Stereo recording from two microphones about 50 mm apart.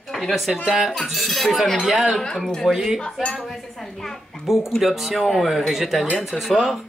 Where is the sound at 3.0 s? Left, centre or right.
Centre.